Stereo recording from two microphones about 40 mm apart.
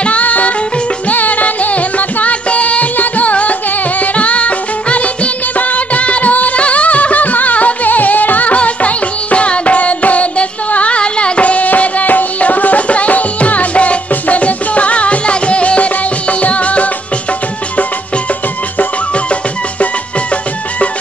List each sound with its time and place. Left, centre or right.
0.0 s music: left
8.5 s music: left